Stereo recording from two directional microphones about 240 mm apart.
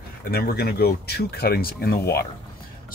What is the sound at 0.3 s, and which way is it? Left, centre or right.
Speech, left.